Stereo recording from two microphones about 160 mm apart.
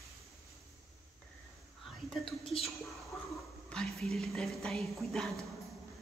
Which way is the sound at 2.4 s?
35° left (ahead or behind).